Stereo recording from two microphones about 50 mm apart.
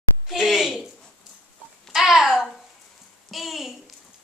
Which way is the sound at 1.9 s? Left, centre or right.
Centre.